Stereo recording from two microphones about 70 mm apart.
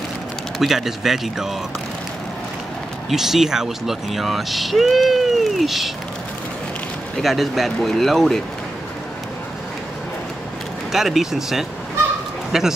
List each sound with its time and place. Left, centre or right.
0.6 s speech: centre
3.1 s speech: centre
7.2 s speech: centre
10.9 s a man's voice: centre